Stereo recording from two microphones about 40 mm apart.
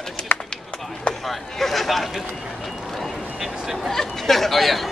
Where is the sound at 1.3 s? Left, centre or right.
Centre.